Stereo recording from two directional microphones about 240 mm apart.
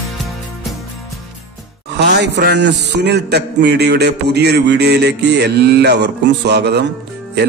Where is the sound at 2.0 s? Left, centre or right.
Right.